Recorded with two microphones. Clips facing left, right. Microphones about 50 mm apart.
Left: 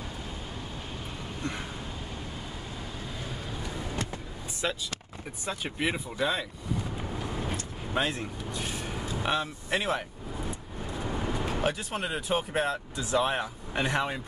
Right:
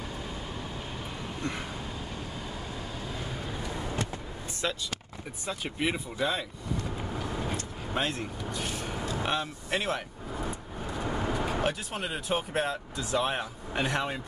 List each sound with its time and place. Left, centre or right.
1.4 s a sound: centre
3.6 s vehicle: centre
4.6 s speech: centre
7.5 s speech: centre
11.0 s vehicle: centre
11.6 s speech: centre